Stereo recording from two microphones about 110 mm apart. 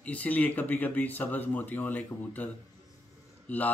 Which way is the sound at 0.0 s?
15° left (ahead or behind).